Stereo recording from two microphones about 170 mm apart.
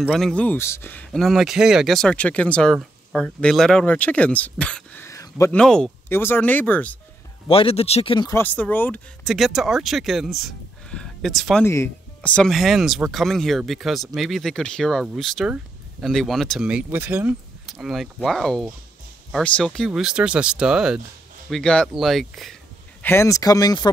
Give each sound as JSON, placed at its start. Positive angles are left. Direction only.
{"t": 0.0, "sound": "speech", "side_deg": 0}
{"t": 5.5, "sound": "speech", "side_deg": 5}
{"t": 7.4, "sound": "speech", "side_deg": 35}
{"t": 8.4, "sound": "speech", "side_deg": 10}
{"t": 9.2, "sound": "speech", "side_deg": 0}
{"t": 11.6, "sound": "speech", "side_deg": 15}
{"t": 23.0, "sound": "speech", "side_deg": 15}